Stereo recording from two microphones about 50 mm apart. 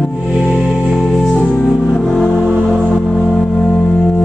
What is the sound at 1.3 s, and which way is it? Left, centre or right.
Music, centre.